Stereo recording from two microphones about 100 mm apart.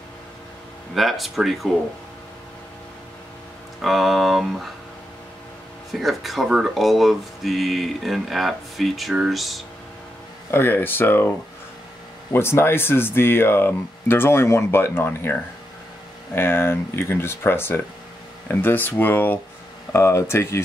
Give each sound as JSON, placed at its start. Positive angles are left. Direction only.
{"t": 0.9, "sound": "speech", "side_deg": 0}
{"t": 3.8, "sound": "speech", "side_deg": 0}
{"t": 5.9, "sound": "speech", "side_deg": 0}
{"t": 10.5, "sound": "speech", "side_deg": 20}
{"t": 16.3, "sound": "speech", "side_deg": 25}